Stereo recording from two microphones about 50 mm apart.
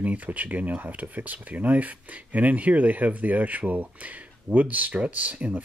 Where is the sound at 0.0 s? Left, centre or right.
Right.